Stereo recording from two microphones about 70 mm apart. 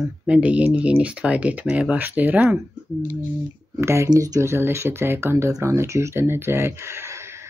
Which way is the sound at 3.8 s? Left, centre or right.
Right.